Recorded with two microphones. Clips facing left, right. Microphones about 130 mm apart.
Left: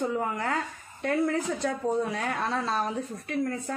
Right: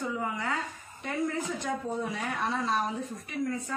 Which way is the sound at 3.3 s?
55° left (ahead or behind).